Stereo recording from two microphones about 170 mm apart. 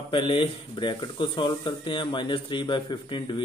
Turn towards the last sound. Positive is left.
turn(degrees=25)  # may be behind; listen again after turning